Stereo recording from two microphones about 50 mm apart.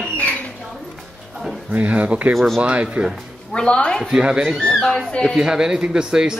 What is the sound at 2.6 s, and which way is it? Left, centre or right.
Speech, right.